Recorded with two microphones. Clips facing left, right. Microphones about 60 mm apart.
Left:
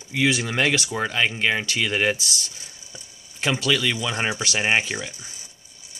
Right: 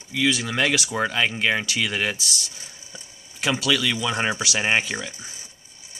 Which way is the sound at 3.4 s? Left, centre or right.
Centre.